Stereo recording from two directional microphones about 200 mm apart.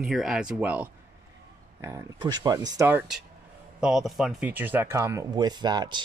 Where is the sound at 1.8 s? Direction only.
20° right (ahead or behind).